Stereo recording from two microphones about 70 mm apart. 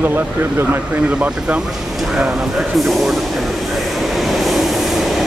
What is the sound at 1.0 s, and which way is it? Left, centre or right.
Speech, centre.